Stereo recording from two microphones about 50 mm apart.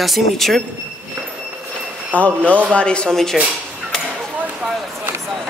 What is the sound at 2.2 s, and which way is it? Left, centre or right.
Speech, left.